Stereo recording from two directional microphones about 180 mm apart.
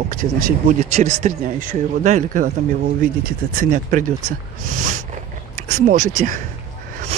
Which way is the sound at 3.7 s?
45° right (ahead or behind).